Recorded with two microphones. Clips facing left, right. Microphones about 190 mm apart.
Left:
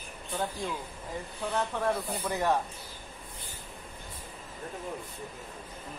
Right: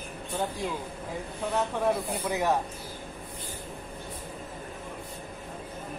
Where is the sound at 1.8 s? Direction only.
10° right (ahead or behind).